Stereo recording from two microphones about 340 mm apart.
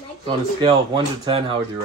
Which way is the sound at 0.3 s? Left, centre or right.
Centre.